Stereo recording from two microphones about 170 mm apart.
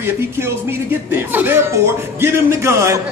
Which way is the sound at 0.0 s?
15° right (ahead or behind).